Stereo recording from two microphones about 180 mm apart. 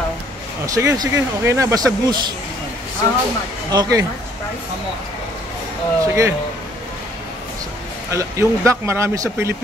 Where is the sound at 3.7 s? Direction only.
20° right (ahead or behind).